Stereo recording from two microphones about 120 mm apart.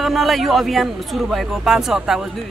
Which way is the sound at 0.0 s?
Centre (ahead or behind).